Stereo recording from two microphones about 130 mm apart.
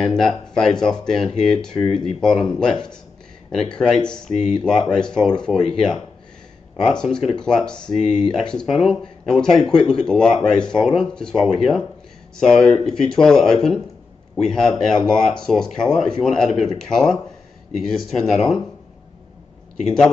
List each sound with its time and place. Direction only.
0.0 s speech: 5° left (ahead or behind)
4.3 s speech: 65° left (ahead or behind)
4.6 s speech: 5° left (ahead or behind)
6.9 s speech: 5° left (ahead or behind)